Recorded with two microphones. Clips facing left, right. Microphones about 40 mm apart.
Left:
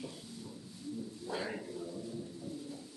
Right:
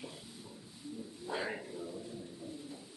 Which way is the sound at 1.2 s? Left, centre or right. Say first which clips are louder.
Right 2 dB; centre.